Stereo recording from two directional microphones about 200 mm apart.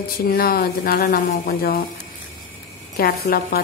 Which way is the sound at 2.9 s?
50° left (ahead or behind).